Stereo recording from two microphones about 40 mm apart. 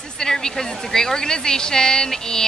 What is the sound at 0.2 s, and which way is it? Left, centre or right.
A woman's voice, centre.